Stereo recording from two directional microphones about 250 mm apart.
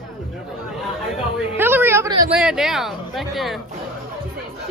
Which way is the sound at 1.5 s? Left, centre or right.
Centre.